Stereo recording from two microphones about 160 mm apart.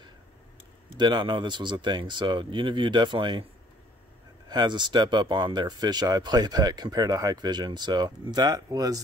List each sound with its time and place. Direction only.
0.9 s speech: 30° right (ahead or behind)
4.5 s speech: 30° right (ahead or behind)